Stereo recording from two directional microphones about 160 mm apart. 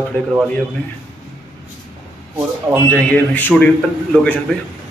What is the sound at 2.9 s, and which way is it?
A man's voice, 10° left (ahead or behind).